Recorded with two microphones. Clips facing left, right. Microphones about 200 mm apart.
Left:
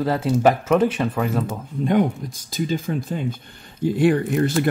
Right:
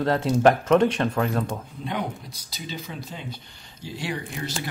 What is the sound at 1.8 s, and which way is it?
Speech, 50° left (ahead or behind).